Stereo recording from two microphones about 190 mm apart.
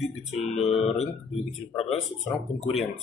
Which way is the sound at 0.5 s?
35° left (ahead or behind).